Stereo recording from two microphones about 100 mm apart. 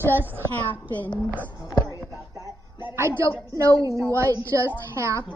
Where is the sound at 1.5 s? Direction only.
45° left (ahead or behind).